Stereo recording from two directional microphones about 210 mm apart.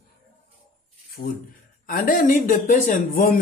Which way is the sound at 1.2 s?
40° left (ahead or behind).